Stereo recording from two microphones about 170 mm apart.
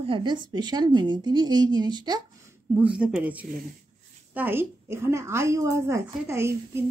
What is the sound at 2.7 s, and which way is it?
A woman's voice, 5° right (ahead or behind).